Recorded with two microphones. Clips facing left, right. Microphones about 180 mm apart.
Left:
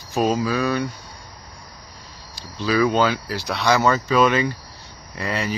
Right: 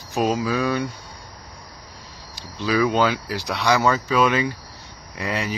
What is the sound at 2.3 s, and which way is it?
Speech, 15° right (ahead or behind).